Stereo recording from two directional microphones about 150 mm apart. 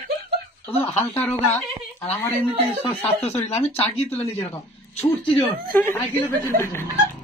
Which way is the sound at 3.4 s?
45° left (ahead or behind).